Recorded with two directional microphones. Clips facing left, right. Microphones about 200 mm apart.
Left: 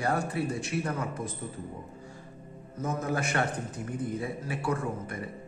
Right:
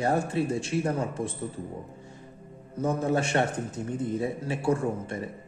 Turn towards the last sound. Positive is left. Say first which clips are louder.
# right 5 dB
turn(degrees=-30)  # may be behind; listen again after turning